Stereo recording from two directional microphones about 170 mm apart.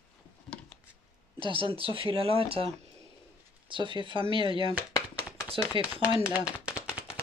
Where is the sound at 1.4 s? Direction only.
30° right (ahead or behind).